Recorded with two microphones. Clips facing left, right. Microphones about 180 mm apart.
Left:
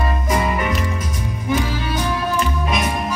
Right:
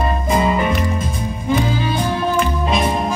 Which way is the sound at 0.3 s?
25° right (ahead or behind).